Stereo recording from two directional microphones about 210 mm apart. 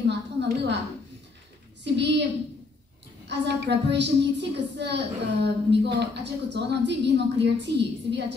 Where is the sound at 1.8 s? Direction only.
55° right (ahead or behind).